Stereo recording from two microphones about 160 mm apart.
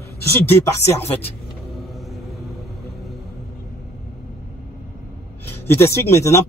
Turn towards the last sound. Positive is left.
turn(degrees=15)  # may be behind; listen again after turning